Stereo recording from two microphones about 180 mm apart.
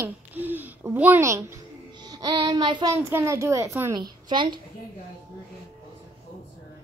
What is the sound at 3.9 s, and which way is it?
Speech, 25° right (ahead or behind).